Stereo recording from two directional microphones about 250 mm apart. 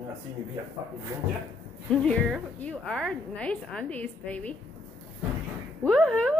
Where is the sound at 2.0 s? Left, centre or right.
Centre.